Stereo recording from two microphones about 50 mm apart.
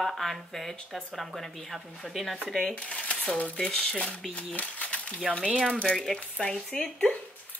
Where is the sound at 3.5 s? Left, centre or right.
Centre.